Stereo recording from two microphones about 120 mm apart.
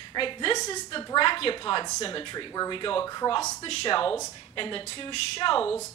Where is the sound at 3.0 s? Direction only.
30° left (ahead or behind).